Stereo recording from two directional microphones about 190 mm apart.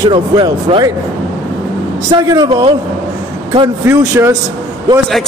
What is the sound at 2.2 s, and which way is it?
Speech, 20° right (ahead or behind).